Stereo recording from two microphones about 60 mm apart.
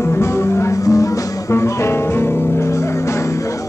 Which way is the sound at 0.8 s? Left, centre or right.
Left.